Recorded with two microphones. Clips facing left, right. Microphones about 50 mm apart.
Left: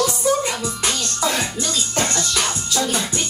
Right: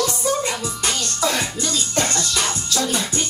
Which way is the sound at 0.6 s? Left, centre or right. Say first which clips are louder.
Left 1 dB; centre.